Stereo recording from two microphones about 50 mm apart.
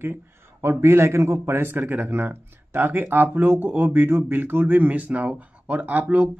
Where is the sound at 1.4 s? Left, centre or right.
Right.